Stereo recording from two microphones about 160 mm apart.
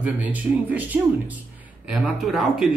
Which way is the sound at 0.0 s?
10° right (ahead or behind).